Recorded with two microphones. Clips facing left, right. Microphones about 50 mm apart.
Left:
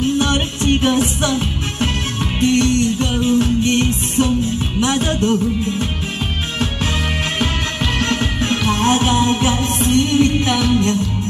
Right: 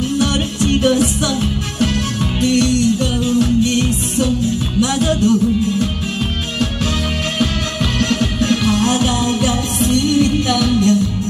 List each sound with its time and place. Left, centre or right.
0.2 s music: left
7.3 s music: left